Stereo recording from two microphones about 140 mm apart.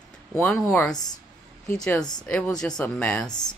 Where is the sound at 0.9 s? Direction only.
30° left (ahead or behind).